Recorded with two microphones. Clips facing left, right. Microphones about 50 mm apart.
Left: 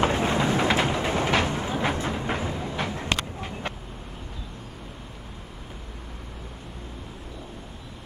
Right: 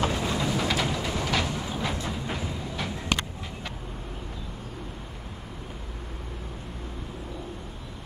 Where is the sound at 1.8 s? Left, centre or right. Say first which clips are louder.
Left 4 dB; left.